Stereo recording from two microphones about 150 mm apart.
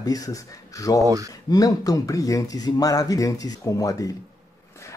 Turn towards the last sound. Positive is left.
turn(degrees=20)  # may be behind; listen again after turning